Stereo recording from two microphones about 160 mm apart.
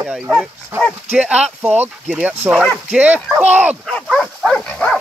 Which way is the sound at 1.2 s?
5° right (ahead or behind).